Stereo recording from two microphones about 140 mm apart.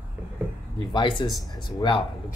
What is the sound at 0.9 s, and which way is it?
Speech, 35° left (ahead or behind).